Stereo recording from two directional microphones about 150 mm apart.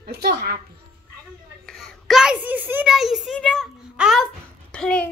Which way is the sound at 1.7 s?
Centre (ahead or behind).